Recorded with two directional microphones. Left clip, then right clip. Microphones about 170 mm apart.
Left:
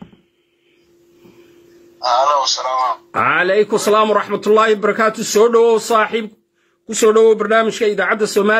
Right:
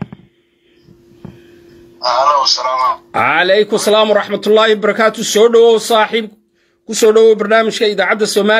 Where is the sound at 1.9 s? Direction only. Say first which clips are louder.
Right 3 dB; 20° right (ahead or behind).